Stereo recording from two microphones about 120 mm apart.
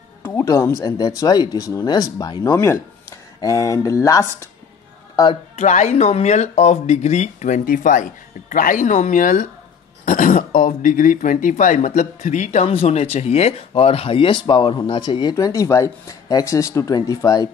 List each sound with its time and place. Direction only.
0.2 s music: 20° left (ahead or behind)
0.9 s speech: 35° left (ahead or behind)
2.5 s speech: 20° left (ahead or behind)
5.6 s speech: 80° left; by 15.3 s 40° left (ahead or behind)
15.3 s speech: 30° left (ahead or behind)